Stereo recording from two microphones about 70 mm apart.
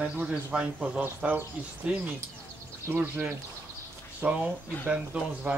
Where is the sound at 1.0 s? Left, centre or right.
Right.